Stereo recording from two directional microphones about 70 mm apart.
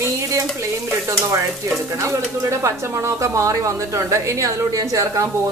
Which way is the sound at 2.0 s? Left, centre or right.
Right.